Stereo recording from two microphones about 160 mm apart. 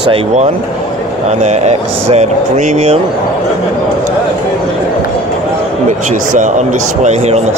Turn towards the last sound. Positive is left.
turn(degrees=-45)  # may be behind; listen again after turning